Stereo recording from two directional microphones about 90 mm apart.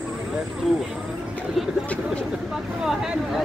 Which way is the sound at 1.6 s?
5° right (ahead or behind).